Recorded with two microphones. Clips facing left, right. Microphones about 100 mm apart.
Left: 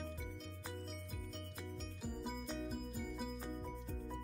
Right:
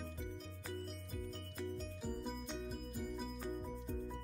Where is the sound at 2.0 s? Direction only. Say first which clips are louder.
Right 1 dB; centre (ahead or behind).